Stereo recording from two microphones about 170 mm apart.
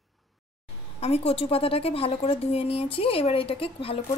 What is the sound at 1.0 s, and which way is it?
A woman's voice, 35° left (ahead or behind).